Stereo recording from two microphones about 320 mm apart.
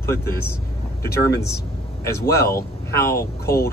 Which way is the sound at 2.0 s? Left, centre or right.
Centre.